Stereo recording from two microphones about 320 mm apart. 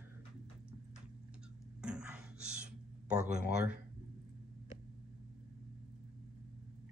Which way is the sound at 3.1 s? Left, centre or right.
Right.